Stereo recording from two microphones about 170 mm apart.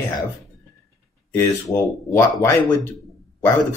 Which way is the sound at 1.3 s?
15° left (ahead or behind).